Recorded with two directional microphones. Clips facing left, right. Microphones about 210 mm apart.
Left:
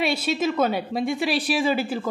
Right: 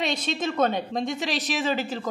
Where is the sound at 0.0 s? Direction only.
10° left (ahead or behind).